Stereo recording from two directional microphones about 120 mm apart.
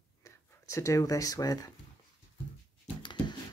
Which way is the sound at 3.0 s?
40° left (ahead or behind).